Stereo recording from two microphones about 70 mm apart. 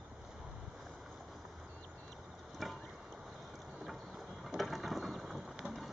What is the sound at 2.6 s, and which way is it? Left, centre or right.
Boat, centre.